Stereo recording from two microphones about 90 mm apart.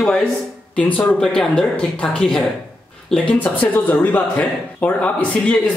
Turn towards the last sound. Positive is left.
turn(degrees=15)  # may be behind; listen again after turning